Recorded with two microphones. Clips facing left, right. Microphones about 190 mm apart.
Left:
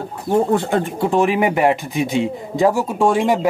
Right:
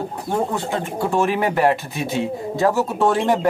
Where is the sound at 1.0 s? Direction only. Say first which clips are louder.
Left 2 dB; 20° left (ahead or behind).